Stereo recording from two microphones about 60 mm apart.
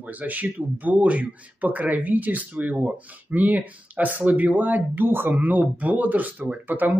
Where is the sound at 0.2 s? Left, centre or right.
Right.